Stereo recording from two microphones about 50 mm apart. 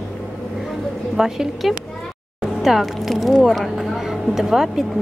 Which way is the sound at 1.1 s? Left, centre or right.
Centre.